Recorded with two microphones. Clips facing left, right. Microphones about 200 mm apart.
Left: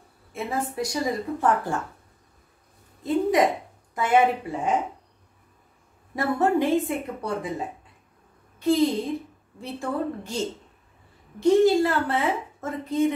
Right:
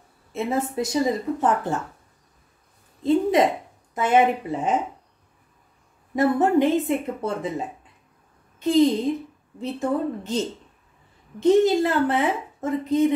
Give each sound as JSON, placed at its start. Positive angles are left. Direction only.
{"t": 0.3, "sound": "a woman's voice", "side_deg": -25}
{"t": 3.0, "sound": "a sound", "side_deg": -25}
{"t": 3.9, "sound": "a woman's voice", "side_deg": -20}
{"t": 6.1, "sound": "a woman's voice", "side_deg": -20}
{"t": 8.5, "sound": "a woman's voice", "side_deg": -20}